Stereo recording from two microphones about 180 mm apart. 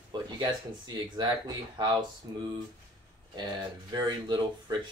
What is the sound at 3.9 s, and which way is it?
Speech, 20° right (ahead or behind).